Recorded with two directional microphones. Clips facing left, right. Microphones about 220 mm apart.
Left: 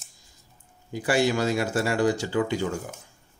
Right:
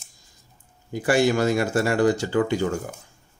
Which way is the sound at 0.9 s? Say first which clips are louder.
Right 3 dB; 50° right (ahead or behind).